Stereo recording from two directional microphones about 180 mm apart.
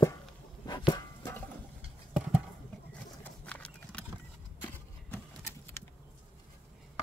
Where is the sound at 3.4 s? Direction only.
5° left (ahead or behind).